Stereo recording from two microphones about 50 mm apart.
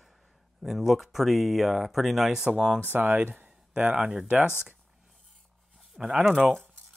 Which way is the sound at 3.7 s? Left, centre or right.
Right.